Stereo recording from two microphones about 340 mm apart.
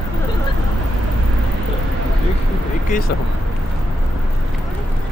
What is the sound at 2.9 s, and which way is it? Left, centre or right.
Vehicle, left.